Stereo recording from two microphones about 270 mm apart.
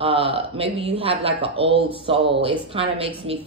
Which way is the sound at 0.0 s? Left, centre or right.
Centre.